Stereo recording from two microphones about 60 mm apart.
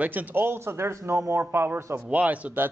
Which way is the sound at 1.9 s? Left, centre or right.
Right.